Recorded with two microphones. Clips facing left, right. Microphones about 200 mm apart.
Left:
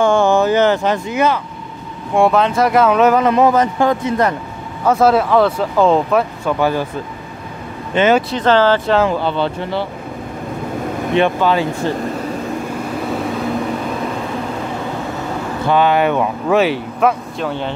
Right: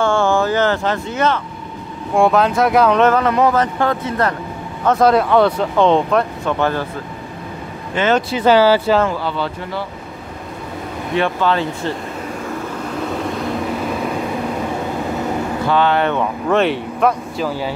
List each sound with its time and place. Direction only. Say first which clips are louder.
0.0 s speech: left 3 dB; 15° left (ahead or behind)
2.1 s speech: left 1 dB; centre (ahead or behind)
3.2 s speech: left 2 dB; 20° left (ahead or behind)
8.0 s speech: left 4 dB; 20° left (ahead or behind)
8.3 s speech: right 1 dB; 10° right (ahead or behind)
9.2 s speech: left 4 dB; 25° left (ahead or behind)
11.1 s speech: left 2 dB; 15° left (ahead or behind)
15.7 s speech: left 3 dB; 15° left (ahead or behind); by 17.7 s 5° right (ahead or behind)